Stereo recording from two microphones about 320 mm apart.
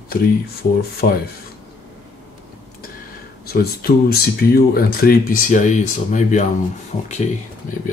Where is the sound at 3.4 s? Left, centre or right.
Left.